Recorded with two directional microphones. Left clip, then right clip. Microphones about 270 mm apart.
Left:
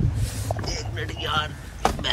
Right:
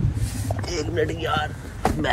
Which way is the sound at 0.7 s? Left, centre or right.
Centre.